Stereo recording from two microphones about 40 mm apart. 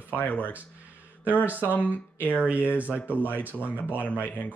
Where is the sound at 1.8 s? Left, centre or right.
Right.